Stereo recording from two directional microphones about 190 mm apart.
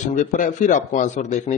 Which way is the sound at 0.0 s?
40° left (ahead or behind).